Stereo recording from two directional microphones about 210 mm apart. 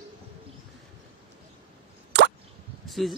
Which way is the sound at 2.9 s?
Centre (ahead or behind).